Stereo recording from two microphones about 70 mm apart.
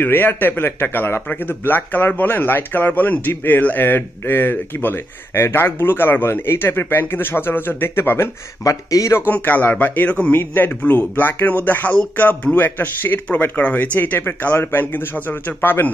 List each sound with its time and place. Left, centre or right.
0.0 s speech: left
8.6 s speech: left
9.3 s speech: left